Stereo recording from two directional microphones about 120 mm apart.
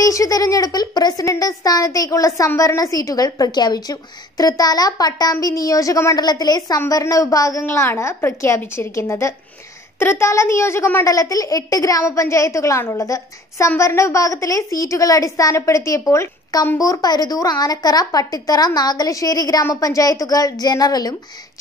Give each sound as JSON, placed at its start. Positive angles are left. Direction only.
{"t": 0.0, "sound": "a woman's voice", "side_deg": 30}